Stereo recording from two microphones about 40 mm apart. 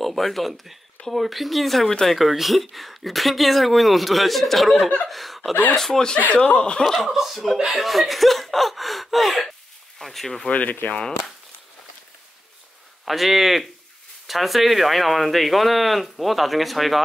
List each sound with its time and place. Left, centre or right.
0.0 s speech: centre
5.5 s speech: left
5.8 s speech: centre
6.1 s speech: left
6.9 s speech: centre
10.5 s speech: left
13.0 s speech: centre